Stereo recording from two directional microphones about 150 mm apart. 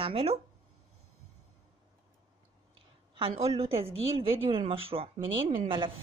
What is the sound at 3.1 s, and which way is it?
A woman's voice, 40° right (ahead or behind).